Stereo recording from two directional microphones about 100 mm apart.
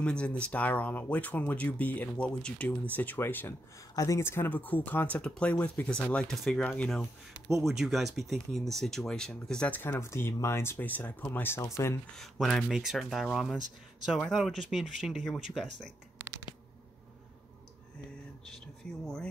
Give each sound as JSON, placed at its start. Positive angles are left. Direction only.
{"t": 0.0, "sound": "speech", "side_deg": 10}
{"t": 3.9, "sound": "speech", "side_deg": 35}
{"t": 6.6, "sound": "speech", "side_deg": 15}
{"t": 7.5, "sound": "speech", "side_deg": 0}
{"t": 9.8, "sound": "speech", "side_deg": 25}
{"t": 12.2, "sound": "speech", "side_deg": 0}